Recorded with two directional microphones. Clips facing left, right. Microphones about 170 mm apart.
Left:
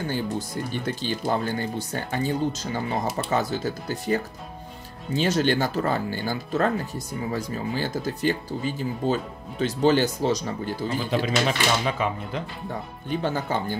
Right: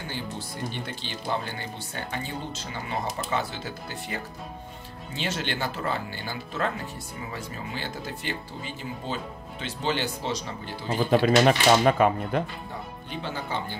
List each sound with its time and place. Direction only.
0.8 s speech: 45° left (ahead or behind)
10.9 s speech: 50° right (ahead or behind)
13.1 s speech: 45° left (ahead or behind)